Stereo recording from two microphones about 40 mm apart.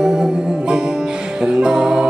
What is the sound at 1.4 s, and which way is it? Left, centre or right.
Music, centre.